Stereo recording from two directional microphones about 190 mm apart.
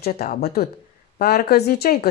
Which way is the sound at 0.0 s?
50° left (ahead or behind).